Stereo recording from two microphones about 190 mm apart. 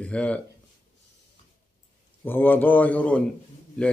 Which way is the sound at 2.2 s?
10° left (ahead or behind).